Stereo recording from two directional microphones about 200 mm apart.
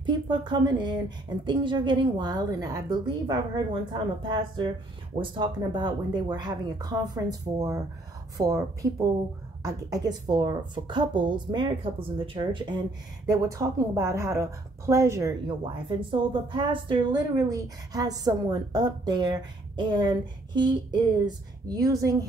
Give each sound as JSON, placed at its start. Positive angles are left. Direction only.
{"t": 0.0, "sound": "a woman's voice", "side_deg": -20}